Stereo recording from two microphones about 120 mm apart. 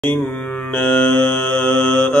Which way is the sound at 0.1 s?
10° left (ahead or behind).